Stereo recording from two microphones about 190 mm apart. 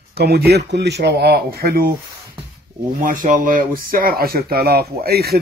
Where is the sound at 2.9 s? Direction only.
45° right (ahead or behind).